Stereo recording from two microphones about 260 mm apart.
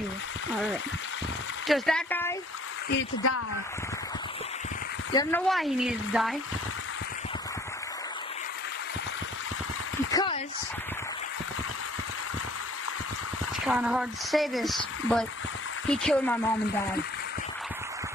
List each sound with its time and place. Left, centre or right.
1.7 s speech: centre
2.9 s speech: left
5.1 s speech: centre
5.5 s speech: centre
10.1 s a sound: centre
13.7 s speech: centre